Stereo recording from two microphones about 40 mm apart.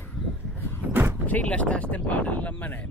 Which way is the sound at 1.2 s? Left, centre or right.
Left.